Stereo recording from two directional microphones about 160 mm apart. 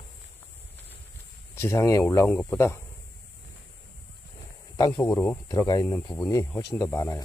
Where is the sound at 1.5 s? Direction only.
15° left (ahead or behind).